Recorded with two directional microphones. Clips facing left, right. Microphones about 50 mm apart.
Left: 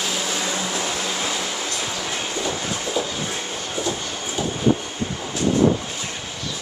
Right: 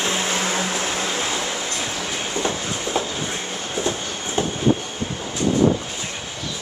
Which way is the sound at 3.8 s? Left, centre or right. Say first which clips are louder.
Right 1 dB; right.